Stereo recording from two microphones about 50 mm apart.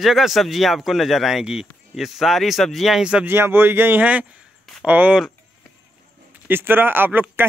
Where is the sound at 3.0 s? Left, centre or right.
Centre.